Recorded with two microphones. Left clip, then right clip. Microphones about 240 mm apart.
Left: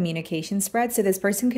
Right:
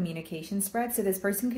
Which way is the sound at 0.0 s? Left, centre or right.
Left.